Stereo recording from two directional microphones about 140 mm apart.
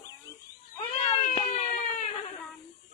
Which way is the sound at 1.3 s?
50° left (ahead or behind).